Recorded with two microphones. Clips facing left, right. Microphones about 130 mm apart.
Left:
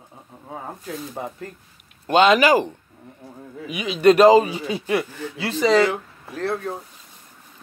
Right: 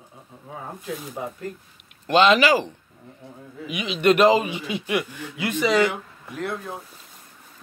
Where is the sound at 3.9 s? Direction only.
35° left (ahead or behind).